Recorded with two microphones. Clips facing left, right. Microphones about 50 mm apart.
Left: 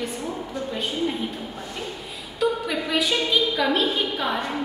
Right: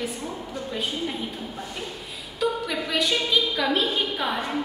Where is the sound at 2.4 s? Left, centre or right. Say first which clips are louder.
Left 2 dB; centre.